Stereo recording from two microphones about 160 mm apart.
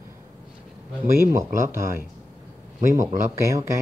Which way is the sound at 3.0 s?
20° right (ahead or behind).